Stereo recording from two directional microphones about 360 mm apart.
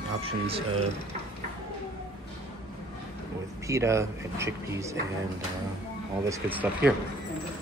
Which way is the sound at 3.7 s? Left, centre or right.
Centre.